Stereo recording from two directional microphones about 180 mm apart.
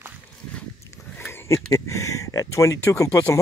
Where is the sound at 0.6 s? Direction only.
10° left (ahead or behind).